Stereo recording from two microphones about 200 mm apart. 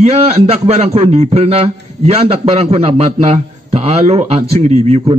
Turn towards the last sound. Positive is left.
turn(degrees=-30)  # may be behind; listen again after turning